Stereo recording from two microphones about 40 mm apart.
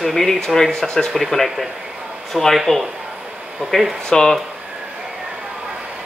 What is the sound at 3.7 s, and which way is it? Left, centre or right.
Speech, centre.